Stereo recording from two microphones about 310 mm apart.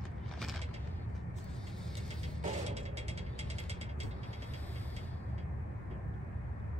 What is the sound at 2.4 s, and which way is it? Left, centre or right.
Music, right.